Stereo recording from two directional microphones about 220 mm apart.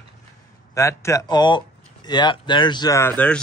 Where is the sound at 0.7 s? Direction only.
15° left (ahead or behind).